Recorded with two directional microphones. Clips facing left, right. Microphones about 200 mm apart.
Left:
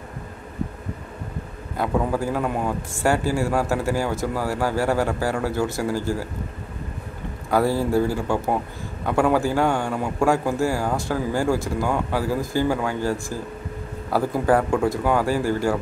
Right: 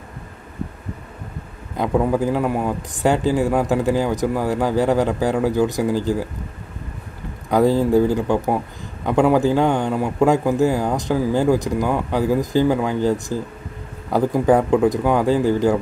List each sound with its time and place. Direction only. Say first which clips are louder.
1.8 s a man's voice: right 4 dB; 20° right (ahead or behind)
7.5 s a man's voice: right 5 dB; 15° right (ahead or behind)